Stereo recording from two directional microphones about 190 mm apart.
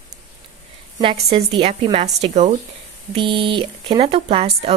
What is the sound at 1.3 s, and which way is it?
A woman's voice, 30° right (ahead or behind).